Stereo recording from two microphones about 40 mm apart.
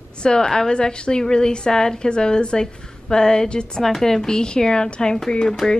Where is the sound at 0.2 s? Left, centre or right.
Centre.